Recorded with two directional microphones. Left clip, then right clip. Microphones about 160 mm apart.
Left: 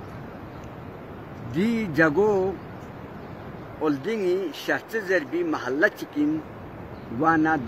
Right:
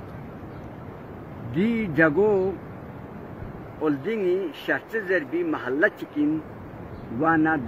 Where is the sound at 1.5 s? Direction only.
20° left (ahead or behind).